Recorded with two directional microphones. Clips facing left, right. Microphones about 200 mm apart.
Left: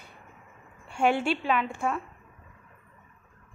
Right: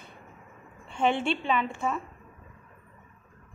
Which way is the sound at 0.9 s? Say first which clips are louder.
Left 1 dB; 10° left (ahead or behind).